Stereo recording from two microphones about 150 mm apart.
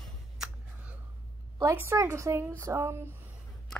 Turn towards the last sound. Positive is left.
turn(degrees=-15)  # may be behind; listen again after turning